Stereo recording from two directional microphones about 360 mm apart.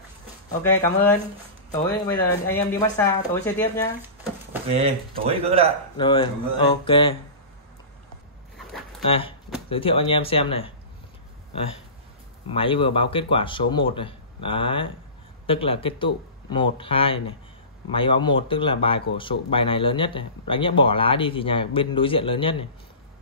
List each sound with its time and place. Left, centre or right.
0.7 s speech: centre
4.7 s speech: centre
5.9 s speech: centre
9.0 s speech: centre
12.4 s speech: centre